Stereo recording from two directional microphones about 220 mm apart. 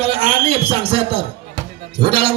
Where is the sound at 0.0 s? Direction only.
25° right (ahead or behind).